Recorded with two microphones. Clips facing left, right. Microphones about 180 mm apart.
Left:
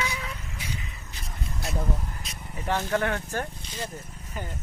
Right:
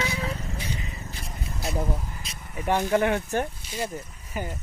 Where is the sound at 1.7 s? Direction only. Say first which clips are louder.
Right 1 dB; 10° right (ahead or behind).